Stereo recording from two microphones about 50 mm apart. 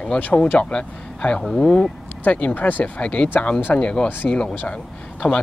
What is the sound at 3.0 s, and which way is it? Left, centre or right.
Speech, left.